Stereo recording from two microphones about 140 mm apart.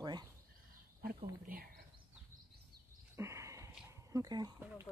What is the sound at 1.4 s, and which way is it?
Speech, 90° right.